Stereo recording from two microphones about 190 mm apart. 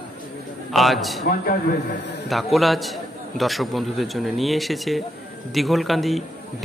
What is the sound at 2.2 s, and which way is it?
A man's voice, centre (ahead or behind).